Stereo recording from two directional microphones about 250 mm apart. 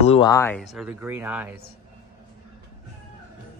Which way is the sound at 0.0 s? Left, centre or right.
Left.